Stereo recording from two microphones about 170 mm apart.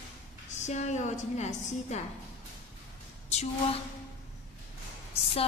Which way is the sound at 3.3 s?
40° left (ahead or behind).